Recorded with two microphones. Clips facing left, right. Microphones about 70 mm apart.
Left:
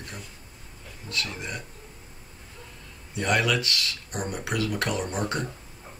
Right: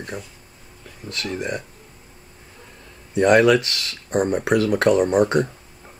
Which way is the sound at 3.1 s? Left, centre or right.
Right.